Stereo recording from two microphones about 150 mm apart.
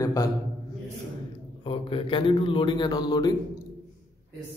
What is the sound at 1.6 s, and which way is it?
A man's voice, 35° left (ahead or behind).